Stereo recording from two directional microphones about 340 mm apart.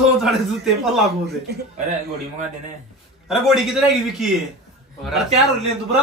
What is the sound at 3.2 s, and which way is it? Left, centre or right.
A man's voice, centre.